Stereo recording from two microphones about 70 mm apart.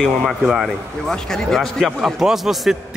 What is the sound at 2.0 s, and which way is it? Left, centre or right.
Speech, centre.